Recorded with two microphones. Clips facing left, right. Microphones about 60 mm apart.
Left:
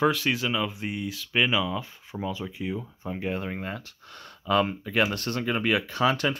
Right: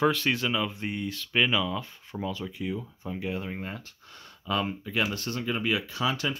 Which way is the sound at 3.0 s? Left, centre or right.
Left.